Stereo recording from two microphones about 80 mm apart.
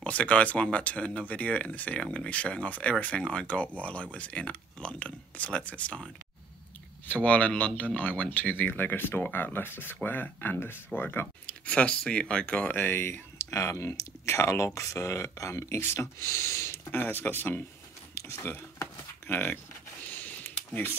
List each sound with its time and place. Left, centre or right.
0.0 s speech: centre
7.1 s speech: centre; by 16.7 s left
16.9 s speech: left
18.1 s a sound: left
19.2 s speech: left
20.1 s a sound: left